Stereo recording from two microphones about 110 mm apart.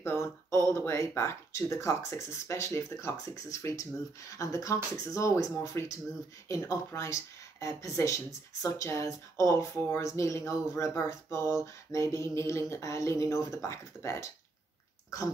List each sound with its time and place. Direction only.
0.0 s speech: 25° left (ahead or behind)